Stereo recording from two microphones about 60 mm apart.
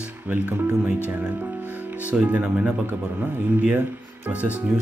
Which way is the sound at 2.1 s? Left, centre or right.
Right.